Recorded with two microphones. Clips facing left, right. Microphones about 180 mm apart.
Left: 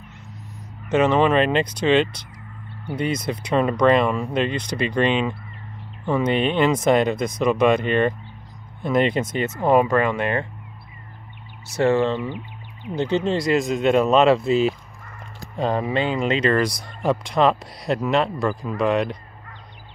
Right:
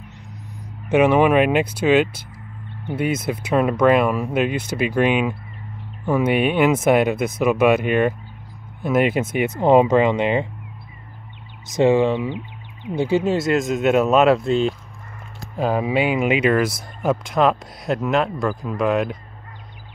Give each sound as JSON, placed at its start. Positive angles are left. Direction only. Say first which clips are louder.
{"t": 0.8, "sound": "speech", "louder": "right 3 dB", "side_deg": -10}
{"t": 11.6, "sound": "speech", "louder": "right 3 dB", "side_deg": -15}